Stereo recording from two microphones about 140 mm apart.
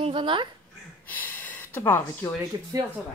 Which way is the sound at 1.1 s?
10° left (ahead or behind).